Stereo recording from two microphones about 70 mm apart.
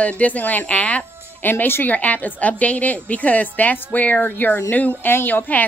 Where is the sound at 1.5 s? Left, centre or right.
Left.